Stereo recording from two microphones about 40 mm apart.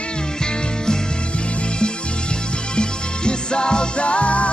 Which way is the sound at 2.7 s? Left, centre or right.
Left.